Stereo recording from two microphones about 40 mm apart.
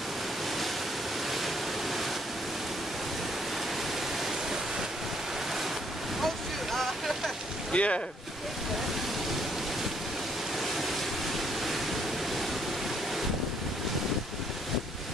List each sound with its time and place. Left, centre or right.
6.2 s a sound: centre
7.7 s speech: left
11.3 s waterfall: centre